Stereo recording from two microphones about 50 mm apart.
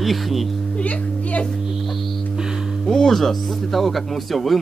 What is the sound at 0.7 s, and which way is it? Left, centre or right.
Speech, left.